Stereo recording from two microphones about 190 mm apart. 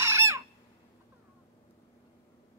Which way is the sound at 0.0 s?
15° right (ahead or behind).